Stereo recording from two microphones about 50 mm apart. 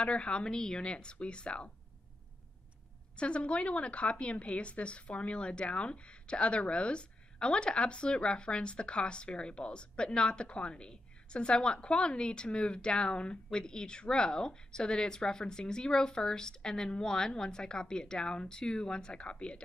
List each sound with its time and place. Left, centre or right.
0.0 s a woman's voice: left
3.2 s a woman's voice: left